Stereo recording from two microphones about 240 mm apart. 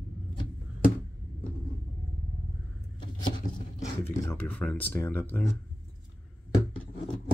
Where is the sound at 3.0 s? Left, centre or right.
Centre.